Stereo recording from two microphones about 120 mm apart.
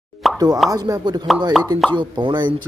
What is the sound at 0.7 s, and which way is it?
Speech, 30° right (ahead or behind).